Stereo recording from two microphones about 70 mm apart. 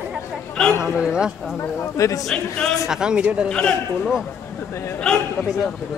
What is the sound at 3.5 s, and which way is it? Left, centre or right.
Speech, centre.